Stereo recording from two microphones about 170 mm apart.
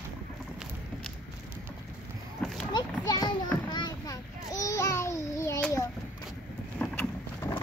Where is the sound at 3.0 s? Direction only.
20° left (ahead or behind).